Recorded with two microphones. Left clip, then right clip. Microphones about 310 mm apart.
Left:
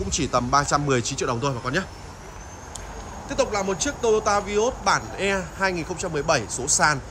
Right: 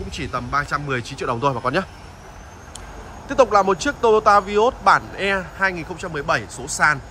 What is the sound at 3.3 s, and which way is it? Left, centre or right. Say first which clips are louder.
Speech: right 9 dB; centre.